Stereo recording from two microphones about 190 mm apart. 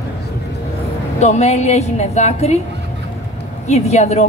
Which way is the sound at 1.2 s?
35° left (ahead or behind).